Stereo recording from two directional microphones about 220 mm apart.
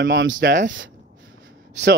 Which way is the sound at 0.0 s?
55° right (ahead or behind).